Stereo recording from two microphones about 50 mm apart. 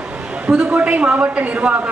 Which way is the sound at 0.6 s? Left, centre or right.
Right.